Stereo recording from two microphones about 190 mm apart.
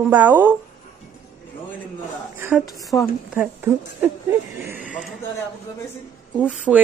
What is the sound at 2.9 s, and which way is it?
Speech, 15° left (ahead or behind).